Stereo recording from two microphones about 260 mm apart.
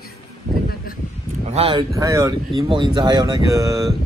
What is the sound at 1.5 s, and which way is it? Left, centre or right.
Speech, centre.